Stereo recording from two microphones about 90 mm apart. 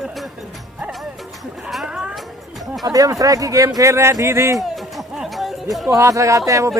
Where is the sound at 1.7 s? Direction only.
5° right (ahead or behind).